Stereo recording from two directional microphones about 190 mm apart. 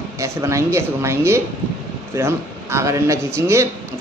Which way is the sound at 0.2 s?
15° right (ahead or behind).